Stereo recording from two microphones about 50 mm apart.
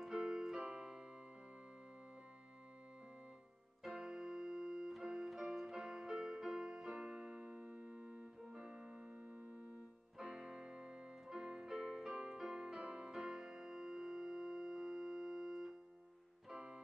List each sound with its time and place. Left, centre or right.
0.0 s keyboard: centre
3.8 s keyboard: centre
10.1 s keyboard: centre
13.1 s music: centre
16.5 s music: centre